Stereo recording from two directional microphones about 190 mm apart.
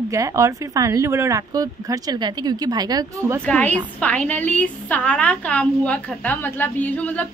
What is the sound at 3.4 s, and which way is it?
A woman's voice, 5° left (ahead or behind).